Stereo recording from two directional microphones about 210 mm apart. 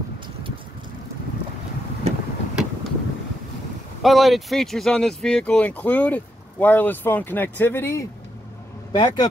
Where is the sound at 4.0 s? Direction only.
Centre (ahead or behind).